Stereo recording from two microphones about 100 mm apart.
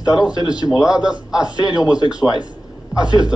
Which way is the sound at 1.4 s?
45° left (ahead or behind).